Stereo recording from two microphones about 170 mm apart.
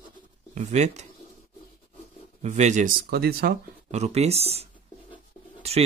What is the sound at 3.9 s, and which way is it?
Speech, 40° right (ahead or behind).